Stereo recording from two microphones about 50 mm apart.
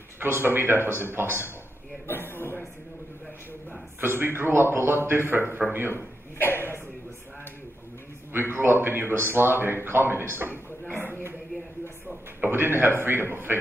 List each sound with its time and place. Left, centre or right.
0.2 s speech: right
2.0 s a sound: left
4.0 s speech: right
5.9 s a sound: left
8.3 s speech: right
12.4 s a man's voice: right